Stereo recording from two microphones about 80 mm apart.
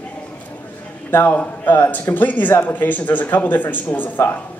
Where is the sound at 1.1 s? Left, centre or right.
Left.